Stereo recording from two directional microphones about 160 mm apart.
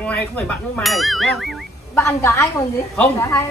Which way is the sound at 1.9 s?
15° left (ahead or behind).